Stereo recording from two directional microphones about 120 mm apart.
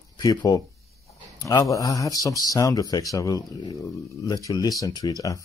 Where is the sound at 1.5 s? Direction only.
30° left (ahead or behind).